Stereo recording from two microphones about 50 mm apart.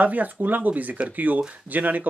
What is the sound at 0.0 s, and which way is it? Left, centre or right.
Speech, right.